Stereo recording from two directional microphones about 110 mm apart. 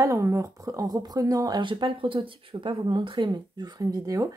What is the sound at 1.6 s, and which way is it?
Speech, 50° right (ahead or behind).